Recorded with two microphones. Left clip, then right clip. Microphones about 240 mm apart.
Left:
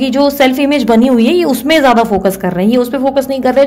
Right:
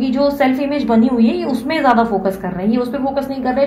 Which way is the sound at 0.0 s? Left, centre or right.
Left.